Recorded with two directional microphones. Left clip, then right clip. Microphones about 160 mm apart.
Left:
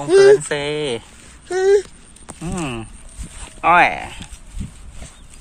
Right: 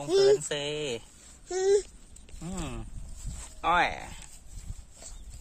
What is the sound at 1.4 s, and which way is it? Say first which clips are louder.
Speech: left 10 dB; 15° right (ahead or behind).